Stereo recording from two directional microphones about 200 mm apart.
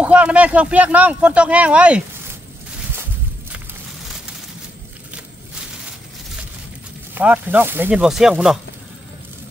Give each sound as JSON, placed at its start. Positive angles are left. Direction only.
{"t": 0.0, "sound": "speech", "side_deg": -5}
{"t": 7.2, "sound": "speech", "side_deg": -10}